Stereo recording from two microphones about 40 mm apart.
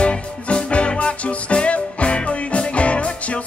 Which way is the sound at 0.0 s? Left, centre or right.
Left.